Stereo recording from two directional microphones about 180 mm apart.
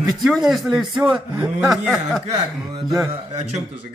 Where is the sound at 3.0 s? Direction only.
35° right (ahead or behind).